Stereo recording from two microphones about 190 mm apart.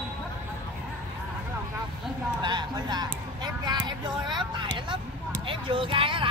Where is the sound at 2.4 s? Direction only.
20° right (ahead or behind).